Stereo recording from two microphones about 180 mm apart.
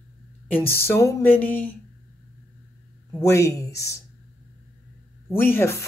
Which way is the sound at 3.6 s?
15° left (ahead or behind).